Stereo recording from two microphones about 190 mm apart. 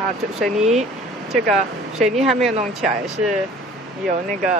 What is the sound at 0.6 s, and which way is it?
Speech, 35° right (ahead or behind).